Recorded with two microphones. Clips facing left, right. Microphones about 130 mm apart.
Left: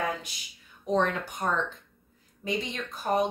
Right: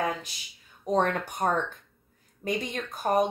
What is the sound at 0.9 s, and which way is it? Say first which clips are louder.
A woman's voice: right 1 dB; 45° right (ahead or behind).